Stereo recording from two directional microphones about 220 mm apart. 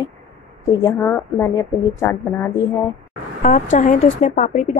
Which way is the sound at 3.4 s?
35° left (ahead or behind).